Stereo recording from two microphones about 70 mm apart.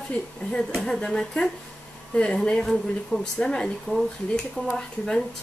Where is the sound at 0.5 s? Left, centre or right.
Centre.